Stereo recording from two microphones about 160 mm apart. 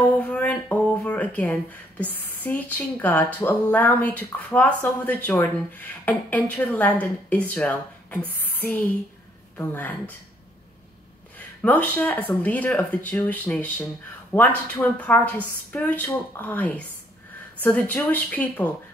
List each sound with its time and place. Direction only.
0.2 s speech: 10° left (ahead or behind)
11.3 s speech: 10° left (ahead or behind)